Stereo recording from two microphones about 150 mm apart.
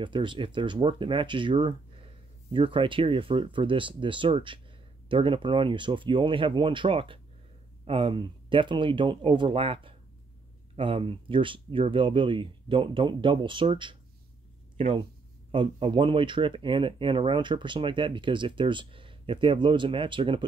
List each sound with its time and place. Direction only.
0.0 s speech: 30° right (ahead or behind)
15.5 s speech: 35° right (ahead or behind)